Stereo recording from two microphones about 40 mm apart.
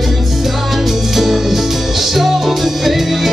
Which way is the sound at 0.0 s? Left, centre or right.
Centre.